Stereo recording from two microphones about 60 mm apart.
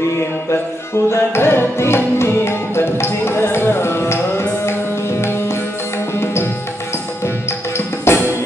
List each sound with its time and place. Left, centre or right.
1.0 s music: left
7.7 s music: left